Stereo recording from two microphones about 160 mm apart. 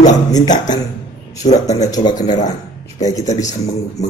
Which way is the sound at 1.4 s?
45° left (ahead or behind).